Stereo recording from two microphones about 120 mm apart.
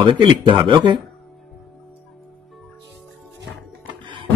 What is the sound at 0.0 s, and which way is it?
Speech, 40° right (ahead or behind).